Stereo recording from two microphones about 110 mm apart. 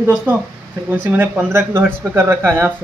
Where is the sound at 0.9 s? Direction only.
15° right (ahead or behind).